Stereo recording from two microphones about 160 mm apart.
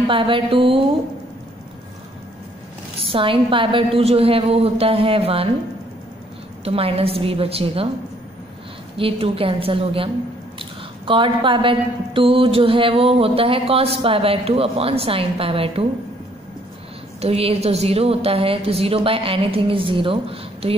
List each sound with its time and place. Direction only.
0.1 s a woman's voice: 35° right (ahead or behind)
3.0 s a woman's voice: 35° right (ahead or behind)
6.6 s a woman's voice: 35° right (ahead or behind)
8.9 s a woman's voice: 35° right (ahead or behind)
17.2 s a woman's voice: 40° right (ahead or behind)